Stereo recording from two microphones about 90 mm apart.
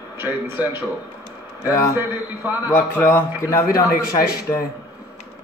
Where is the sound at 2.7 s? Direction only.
25° left (ahead or behind).